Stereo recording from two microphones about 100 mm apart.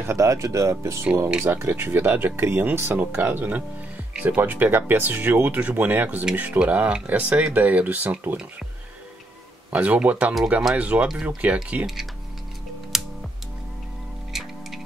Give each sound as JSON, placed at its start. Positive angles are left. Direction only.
{"t": 0.0, "sound": "speech", "side_deg": -30}
{"t": 9.7, "sound": "speech", "side_deg": -15}
{"t": 11.8, "sound": "speech", "side_deg": -5}
{"t": 12.9, "sound": "music", "side_deg": 0}
{"t": 14.3, "sound": "music", "side_deg": -5}